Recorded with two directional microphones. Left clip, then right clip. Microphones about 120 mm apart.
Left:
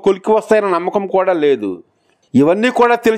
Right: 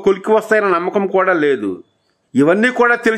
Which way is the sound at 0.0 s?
35° left (ahead or behind).